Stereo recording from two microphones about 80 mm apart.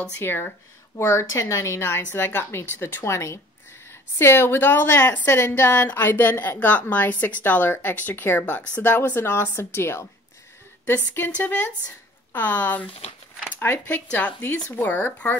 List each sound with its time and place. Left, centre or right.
0.2 s a woman's voice: left
11.1 s a woman's voice: left